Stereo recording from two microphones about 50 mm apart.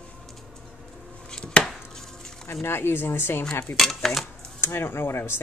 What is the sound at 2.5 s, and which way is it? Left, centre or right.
Speech, left.